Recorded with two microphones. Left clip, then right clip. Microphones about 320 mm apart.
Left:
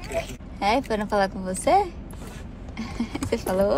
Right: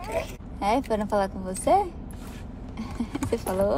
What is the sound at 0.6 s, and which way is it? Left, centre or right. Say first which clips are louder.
Speech: left 2 dB; left.